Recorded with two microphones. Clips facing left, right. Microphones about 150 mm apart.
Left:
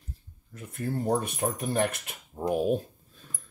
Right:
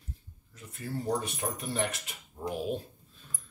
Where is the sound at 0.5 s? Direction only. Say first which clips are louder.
Left 6 dB; 55° left (ahead or behind).